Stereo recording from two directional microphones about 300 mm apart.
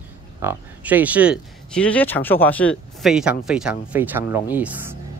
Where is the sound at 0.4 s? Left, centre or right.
Centre.